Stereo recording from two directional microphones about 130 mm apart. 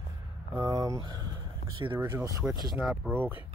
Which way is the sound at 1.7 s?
40° right (ahead or behind).